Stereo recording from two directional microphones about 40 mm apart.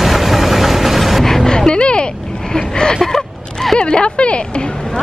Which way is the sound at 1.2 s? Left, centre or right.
Centre.